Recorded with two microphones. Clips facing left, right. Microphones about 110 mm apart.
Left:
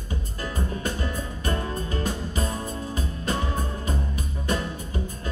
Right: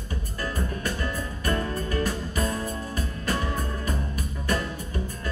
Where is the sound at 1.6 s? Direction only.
25° left (ahead or behind).